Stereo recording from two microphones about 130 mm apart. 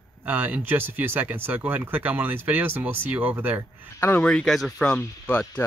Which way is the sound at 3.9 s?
20° left (ahead or behind).